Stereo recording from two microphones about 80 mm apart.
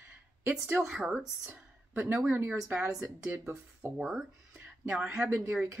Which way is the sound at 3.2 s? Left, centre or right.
Right.